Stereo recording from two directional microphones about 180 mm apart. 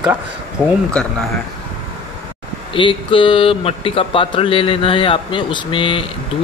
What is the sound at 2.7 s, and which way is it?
Speech, 30° left (ahead or behind).